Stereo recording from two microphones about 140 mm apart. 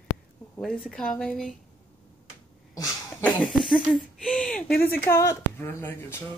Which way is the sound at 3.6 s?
Centre (ahead or behind).